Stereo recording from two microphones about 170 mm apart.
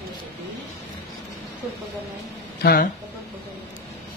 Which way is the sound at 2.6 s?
60° left (ahead or behind).